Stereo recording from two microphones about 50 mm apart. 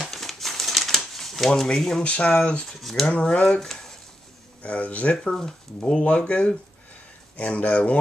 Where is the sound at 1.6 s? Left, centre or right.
Centre.